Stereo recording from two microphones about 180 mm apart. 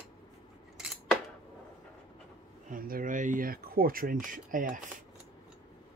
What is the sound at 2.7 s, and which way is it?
Speech, 50° right (ahead or behind).